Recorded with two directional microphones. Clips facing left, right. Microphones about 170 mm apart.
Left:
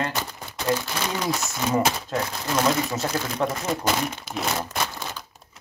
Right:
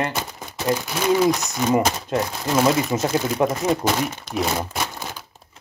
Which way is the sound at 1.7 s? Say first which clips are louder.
Right 3 dB; 15° right (ahead or behind).